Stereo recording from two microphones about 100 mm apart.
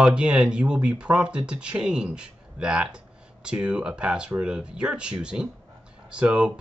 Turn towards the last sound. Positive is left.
turn(degrees=-10)  # may be behind; listen again after turning